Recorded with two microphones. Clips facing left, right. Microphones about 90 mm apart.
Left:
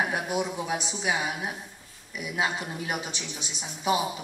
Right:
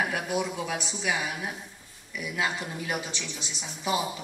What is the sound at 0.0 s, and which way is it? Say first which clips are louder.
A woman's voice: left 1 dB; 20° left (ahead or behind).